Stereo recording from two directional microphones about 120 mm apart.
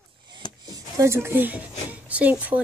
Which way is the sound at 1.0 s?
20° right (ahead or behind).